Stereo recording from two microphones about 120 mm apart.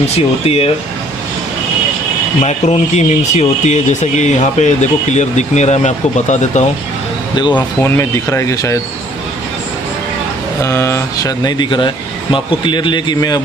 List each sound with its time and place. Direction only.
0.0 s speech: 55° left (ahead or behind)
2.4 s speech: 70° left (ahead or behind)
7.5 s speech: 20° left (ahead or behind)
10.6 s speech: 25° left (ahead or behind)